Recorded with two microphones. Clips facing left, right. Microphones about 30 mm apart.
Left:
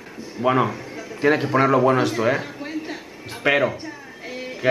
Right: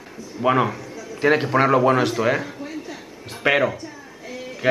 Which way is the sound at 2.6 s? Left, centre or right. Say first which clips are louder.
Left 3 dB; left.